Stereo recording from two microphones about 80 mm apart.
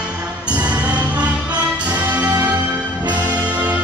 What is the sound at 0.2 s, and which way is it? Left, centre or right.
Music, centre.